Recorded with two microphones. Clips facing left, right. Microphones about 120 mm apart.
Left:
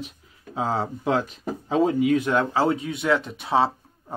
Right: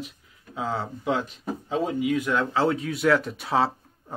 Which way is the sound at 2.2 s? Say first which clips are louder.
Left 2 dB; 25° left (ahead or behind).